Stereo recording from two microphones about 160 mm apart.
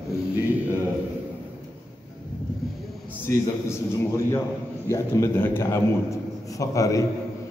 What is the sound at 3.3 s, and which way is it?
A man's voice, 20° left (ahead or behind).